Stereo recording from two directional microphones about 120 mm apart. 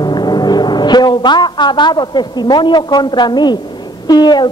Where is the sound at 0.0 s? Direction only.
35° left (ahead or behind).